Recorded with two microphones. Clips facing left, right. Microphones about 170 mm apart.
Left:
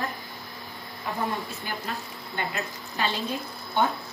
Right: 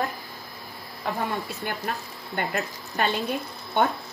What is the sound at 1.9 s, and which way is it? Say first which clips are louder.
Speech: right 3 dB; 60° right (ahead or behind).